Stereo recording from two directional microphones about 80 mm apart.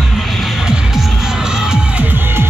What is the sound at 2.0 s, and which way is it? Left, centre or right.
Music, right.